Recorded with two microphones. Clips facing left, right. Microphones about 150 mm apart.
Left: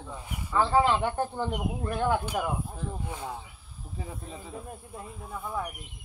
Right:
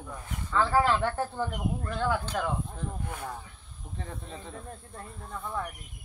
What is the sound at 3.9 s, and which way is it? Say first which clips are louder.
Speech: left 1 dB; 5° left (ahead or behind).